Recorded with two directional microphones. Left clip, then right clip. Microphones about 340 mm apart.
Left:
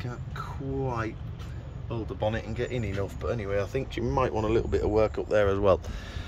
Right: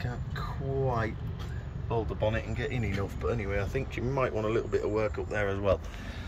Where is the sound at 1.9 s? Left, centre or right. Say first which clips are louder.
Even; centre.